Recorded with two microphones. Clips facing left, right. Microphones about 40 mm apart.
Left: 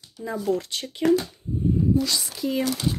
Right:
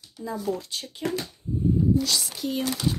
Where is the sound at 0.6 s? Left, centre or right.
Left.